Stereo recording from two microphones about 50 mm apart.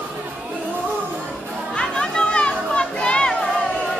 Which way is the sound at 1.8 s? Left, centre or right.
Centre.